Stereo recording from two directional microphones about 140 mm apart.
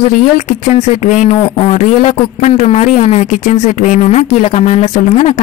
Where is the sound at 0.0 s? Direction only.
70° left (ahead or behind).